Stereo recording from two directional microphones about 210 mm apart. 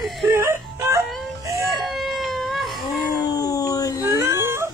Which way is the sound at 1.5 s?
15° right (ahead or behind).